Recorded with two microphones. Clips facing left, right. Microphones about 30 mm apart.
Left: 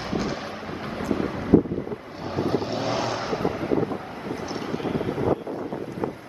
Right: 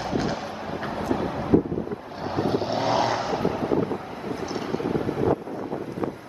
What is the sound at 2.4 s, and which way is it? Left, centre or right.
Vehicle, centre.